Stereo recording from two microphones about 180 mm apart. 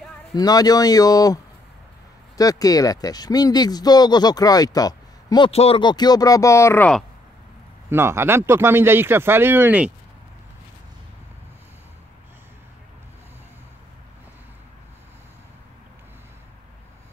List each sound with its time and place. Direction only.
0.4 s speech: 20° left (ahead or behind)
5.5 s speech: 35° left (ahead or behind); by 6.9 s 15° left (ahead or behind)
7.9 s speech: 15° right (ahead or behind)